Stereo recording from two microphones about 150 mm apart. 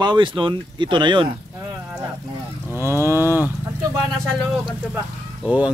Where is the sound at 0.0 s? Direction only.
30° right (ahead or behind).